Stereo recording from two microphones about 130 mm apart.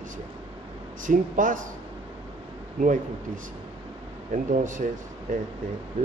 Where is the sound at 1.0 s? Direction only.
90° right.